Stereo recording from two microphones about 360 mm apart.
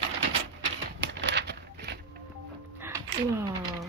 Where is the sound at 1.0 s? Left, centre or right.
Right.